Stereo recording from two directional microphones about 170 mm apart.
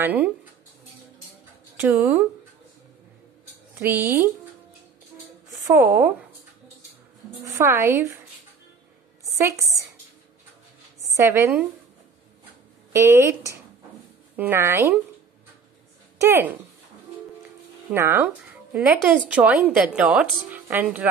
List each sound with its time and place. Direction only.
0.0 s speech: 10° right (ahead or behind)
1.8 s a woman's voice: 10° right (ahead or behind)
5.6 s a woman's voice: 20° right (ahead or behind)
7.4 s a woman's voice: 15° right (ahead or behind)
9.3 s a woman's voice: 15° right (ahead or behind)
11.1 s a woman's voice: 15° right (ahead or behind)
12.9 s a woman's voice: 15° right (ahead or behind)
16.2 s a woman's voice: 15° right (ahead or behind)
17.9 s a woman's voice: 15° right (ahead or behind)